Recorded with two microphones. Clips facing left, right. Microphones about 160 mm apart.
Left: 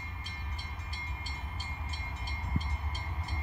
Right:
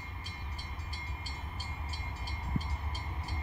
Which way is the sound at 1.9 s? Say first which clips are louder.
Even; 15° left (ahead or behind).